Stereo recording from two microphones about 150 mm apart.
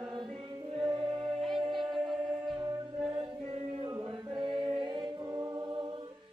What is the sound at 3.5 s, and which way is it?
Singing, 35° right (ahead or behind).